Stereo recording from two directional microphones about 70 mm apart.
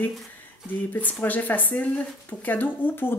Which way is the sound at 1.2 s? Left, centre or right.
Left.